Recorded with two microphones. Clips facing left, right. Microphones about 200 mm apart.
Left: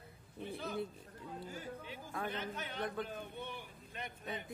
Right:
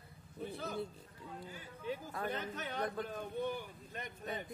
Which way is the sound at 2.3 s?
45° right (ahead or behind).